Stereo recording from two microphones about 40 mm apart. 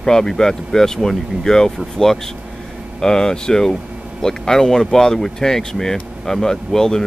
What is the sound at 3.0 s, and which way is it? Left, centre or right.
Speech, centre.